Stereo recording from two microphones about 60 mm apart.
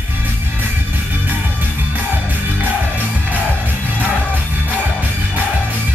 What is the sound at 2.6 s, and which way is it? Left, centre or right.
Music, right.